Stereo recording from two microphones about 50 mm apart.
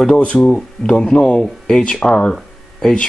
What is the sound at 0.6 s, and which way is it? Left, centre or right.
Speech, centre.